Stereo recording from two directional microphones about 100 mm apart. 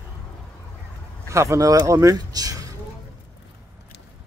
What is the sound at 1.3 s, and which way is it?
Speech, 30° right (ahead or behind).